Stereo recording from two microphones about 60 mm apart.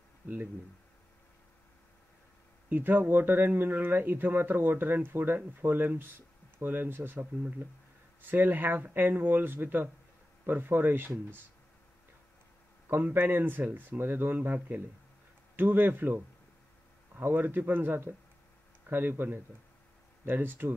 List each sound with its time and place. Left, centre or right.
2.7 s speech: right
12.9 s speech: right
17.2 s speech: right